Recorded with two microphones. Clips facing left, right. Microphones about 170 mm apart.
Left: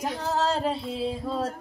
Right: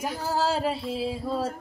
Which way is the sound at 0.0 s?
5° right (ahead or behind).